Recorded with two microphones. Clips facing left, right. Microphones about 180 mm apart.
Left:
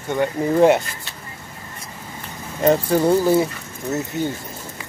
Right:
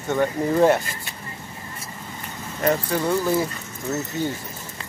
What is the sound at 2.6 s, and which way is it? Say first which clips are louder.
Speech: left 6 dB; 25° left (ahead or behind).